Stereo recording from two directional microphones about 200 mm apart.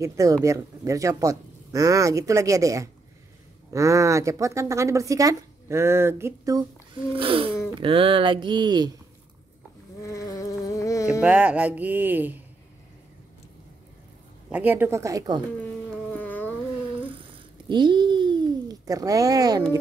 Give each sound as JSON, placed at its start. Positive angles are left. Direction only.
{"t": 0.0, "sound": "speech", "side_deg": -15}
{"t": 7.2, "sound": "speech", "side_deg": -25}
{"t": 10.0, "sound": "insect", "side_deg": 15}
{"t": 11.1, "sound": "speech", "side_deg": -5}
{"t": 14.7, "sound": "speech", "side_deg": -10}
{"t": 16.1, "sound": "a sound", "side_deg": 10}
{"t": 17.6, "sound": "a sound", "side_deg": -20}